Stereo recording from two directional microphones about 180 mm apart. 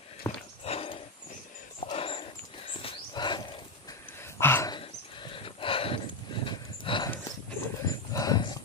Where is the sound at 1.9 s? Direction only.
30° left (ahead or behind).